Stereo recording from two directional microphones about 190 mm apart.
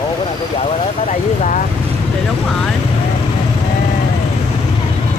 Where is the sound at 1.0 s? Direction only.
40° left (ahead or behind).